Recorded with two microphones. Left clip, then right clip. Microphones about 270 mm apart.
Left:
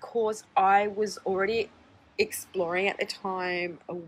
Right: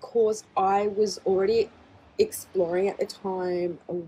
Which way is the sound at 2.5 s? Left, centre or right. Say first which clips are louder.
Right 2 dB; left.